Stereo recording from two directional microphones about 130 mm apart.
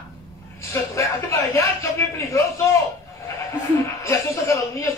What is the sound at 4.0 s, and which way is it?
Speech, 20° left (ahead or behind).